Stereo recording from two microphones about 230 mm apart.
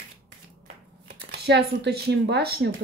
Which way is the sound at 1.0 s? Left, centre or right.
Right.